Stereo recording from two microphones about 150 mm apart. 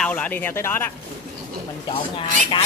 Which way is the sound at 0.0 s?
10° left (ahead or behind).